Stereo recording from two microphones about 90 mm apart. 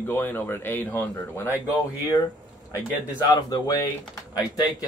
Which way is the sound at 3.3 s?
45° left (ahead or behind).